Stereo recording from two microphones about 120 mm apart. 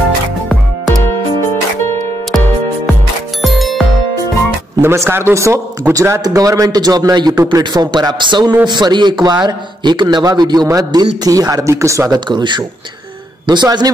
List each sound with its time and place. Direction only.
3.4 s music: centre (ahead or behind)
4.8 s a man's voice: 20° right (ahead or behind)
12.3 s speech: 40° right (ahead or behind)